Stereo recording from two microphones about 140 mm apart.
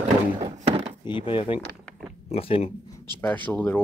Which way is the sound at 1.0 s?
35° left (ahead or behind).